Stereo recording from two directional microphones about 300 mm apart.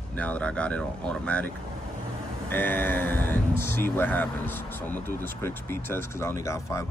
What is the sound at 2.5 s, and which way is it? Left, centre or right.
Speech, centre.